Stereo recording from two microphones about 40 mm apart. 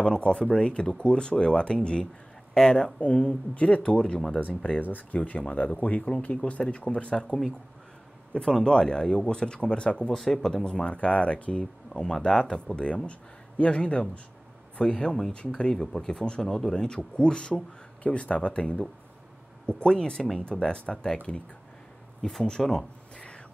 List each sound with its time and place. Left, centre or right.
0.2 s speech: left
3.0 s speech: left
4.8 s speech: left
10.1 s speech: centre
10.5 s speech: left
12.7 s speech: left
15.7 s speech: centre
22.5 s speech: centre